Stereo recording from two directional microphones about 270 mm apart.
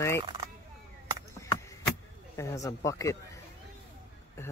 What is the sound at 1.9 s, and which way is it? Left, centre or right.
Vehicle, centre.